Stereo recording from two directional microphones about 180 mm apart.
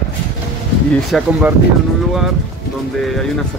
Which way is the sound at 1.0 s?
Centre (ahead or behind).